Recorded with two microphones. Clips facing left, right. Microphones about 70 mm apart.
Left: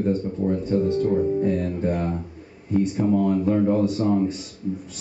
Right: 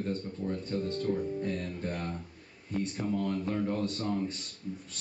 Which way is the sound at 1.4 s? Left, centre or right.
Centre.